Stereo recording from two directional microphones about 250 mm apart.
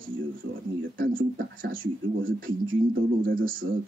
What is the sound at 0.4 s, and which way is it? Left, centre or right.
Speech, right.